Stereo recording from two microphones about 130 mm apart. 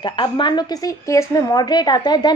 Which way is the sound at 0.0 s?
35° left (ahead or behind).